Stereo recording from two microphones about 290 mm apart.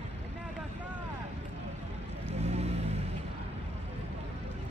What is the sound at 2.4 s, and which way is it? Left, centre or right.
Vehicle, right.